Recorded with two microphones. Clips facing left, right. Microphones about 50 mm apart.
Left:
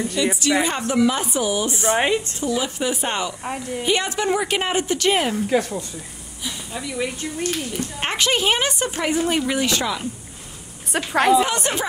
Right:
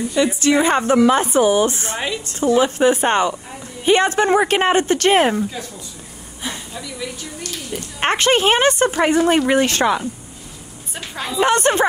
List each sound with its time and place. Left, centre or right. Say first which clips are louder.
0.4 s a woman's voice: right 5 dB; right
1.9 s speech: left 6 dB; left
2.4 s speech: right 8 dB; right
5.5 s speech: left 10 dB; left
6.8 s speech: left 8 dB; left
8.0 s speech: right 6 dB; right
10.9 s a woman's voice: left 10 dB; left
11.3 s speech: right 3 dB; right